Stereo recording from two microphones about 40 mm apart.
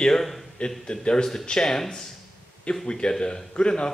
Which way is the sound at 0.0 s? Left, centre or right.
Centre.